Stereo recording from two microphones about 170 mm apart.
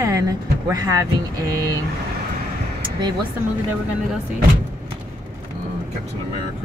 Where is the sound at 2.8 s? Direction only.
25° right (ahead or behind).